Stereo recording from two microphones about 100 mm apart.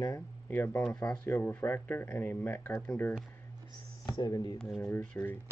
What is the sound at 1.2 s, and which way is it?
Speech, 25° left (ahead or behind).